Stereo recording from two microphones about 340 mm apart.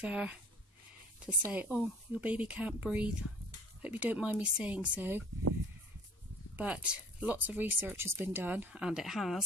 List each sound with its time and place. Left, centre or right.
0.0 s speech: centre
6.5 s speech: centre